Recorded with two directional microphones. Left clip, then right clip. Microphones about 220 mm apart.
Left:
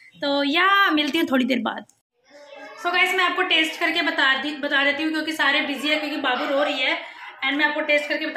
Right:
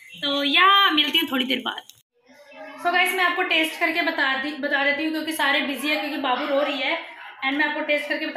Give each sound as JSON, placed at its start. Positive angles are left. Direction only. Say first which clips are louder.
{"t": 0.2, "sound": "a woman's voice", "louder": "right 2 dB", "side_deg": 55}
{"t": 2.8, "sound": "a woman's voice", "louder": "even", "side_deg": 10}
{"t": 7.3, "sound": "a woman's voice", "louder": "left 2 dB", "side_deg": 10}